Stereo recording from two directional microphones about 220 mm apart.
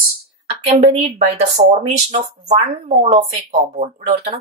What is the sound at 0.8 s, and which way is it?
A woman's voice, 30° right (ahead or behind).